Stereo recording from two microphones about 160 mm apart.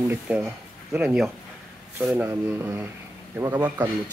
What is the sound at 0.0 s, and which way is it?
Speech, 10° right (ahead or behind).